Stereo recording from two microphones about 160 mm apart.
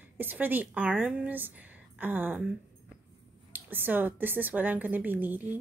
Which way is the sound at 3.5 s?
10° right (ahead or behind).